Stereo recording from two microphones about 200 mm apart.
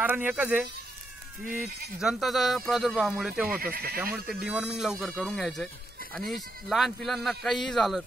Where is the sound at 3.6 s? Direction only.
50° right (ahead or behind).